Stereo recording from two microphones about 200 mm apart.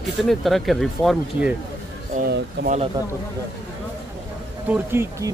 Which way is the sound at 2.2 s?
50° right (ahead or behind).